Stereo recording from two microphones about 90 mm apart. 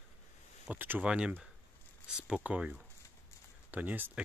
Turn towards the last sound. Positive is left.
turn(degrees=-20)  # may be behind; listen again after turning